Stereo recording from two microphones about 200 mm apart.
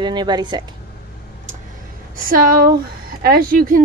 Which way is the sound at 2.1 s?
45° right (ahead or behind).